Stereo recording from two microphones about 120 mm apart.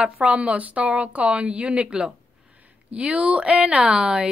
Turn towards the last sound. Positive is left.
turn(degrees=-5)  # may be behind; listen again after turning